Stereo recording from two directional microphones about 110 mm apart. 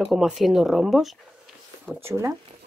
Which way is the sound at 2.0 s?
25° right (ahead or behind).